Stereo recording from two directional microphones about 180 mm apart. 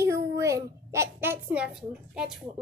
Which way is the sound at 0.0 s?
15° right (ahead or behind).